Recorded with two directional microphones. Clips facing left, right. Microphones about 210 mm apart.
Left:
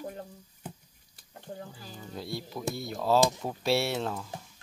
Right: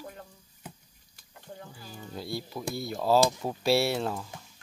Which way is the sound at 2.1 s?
Centre (ahead or behind).